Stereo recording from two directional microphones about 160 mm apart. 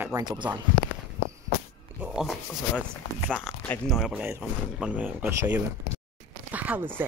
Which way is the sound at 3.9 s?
5° right (ahead or behind).